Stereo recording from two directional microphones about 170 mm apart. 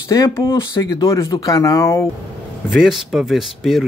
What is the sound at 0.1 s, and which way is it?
Speech, 20° left (ahead or behind).